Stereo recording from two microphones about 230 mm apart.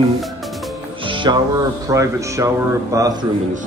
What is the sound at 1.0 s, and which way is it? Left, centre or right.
Speech, right.